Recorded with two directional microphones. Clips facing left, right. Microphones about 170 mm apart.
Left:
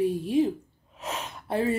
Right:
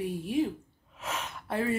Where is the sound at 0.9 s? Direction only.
20° left (ahead or behind).